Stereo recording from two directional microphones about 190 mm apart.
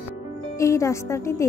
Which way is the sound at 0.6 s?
15° left (ahead or behind).